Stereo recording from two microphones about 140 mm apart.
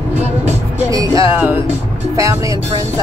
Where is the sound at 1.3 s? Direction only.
15° right (ahead or behind).